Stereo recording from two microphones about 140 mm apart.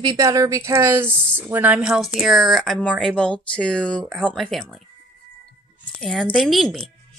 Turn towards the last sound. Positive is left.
turn(degrees=5)  # may be behind; listen again after turning